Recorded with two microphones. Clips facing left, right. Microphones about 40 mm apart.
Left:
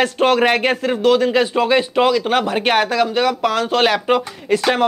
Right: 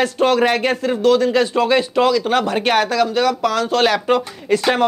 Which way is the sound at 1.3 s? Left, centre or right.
Left.